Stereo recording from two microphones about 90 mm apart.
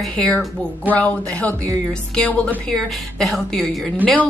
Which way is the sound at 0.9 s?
15° left (ahead or behind).